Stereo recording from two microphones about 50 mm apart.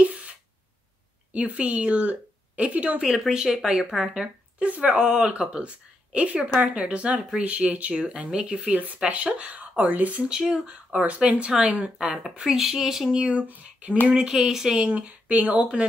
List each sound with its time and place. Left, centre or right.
0.0 s a sound: right
1.3 s a woman's voice: right
3.0 s speech: centre
4.6 s speech: right
10.2 s speech: centre
10.7 s speech: right
12.4 s speech: centre
13.2 s speech: right
14.0 s speech: centre
14.3 s speech: centre
14.8 s speech: right